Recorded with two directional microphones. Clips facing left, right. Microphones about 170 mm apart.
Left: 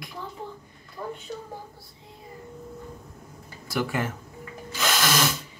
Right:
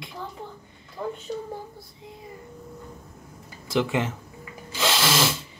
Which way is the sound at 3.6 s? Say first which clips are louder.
Right 3 dB; 25° right (ahead or behind).